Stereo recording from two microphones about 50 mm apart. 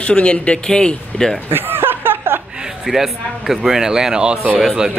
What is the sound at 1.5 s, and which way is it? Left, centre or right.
Chuckle, right.